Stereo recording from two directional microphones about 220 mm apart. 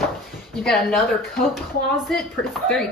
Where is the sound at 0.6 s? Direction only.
5° left (ahead or behind).